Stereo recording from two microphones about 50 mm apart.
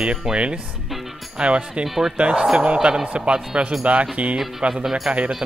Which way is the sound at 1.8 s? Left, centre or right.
Centre.